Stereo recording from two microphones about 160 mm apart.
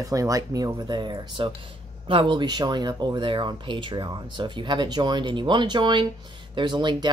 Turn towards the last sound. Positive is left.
turn(degrees=-30)  # may be behind; listen again after turning